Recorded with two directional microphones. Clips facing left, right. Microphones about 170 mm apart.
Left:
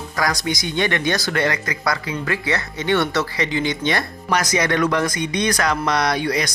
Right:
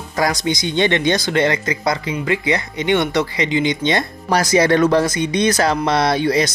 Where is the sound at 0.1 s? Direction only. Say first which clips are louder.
Right 4 dB; 25° right (ahead or behind).